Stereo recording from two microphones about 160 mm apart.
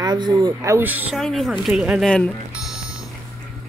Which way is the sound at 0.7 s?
10° right (ahead or behind).